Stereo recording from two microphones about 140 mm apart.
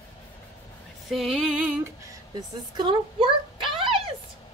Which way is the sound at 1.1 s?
Centre (ahead or behind).